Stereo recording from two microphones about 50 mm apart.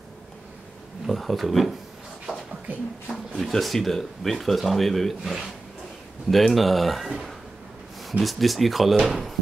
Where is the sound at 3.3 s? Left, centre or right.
Centre.